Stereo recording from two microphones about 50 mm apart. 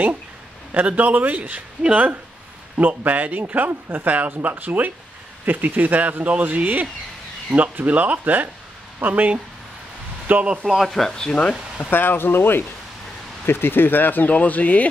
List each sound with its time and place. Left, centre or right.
0.7 s speech: right
10.8 s speech: centre; by 11.9 s left
11.9 s speech: left